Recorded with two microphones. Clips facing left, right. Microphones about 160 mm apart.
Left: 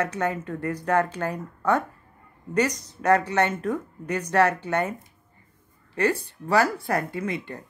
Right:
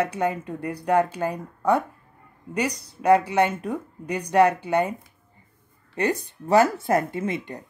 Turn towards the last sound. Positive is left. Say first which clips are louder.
# right 2 dB
turn(degrees=-20)  # may be behind; listen again after turning